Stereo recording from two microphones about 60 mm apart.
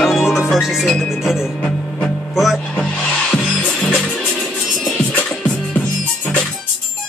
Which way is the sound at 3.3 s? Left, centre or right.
Left.